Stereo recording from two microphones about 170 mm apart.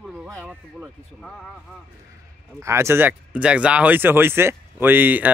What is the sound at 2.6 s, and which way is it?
Speech, 15° right (ahead or behind).